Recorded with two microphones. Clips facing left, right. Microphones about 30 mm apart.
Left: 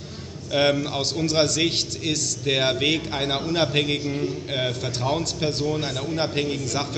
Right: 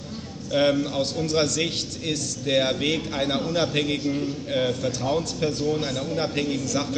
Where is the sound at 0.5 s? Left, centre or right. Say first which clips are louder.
Even; left.